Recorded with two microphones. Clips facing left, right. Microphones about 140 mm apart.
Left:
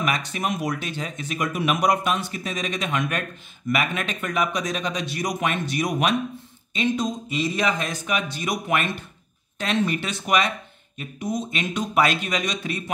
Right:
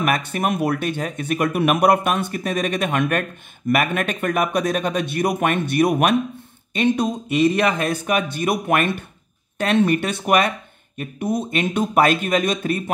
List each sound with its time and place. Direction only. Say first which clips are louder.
0.0 s speech: right 5 dB; 55° right (ahead or behind)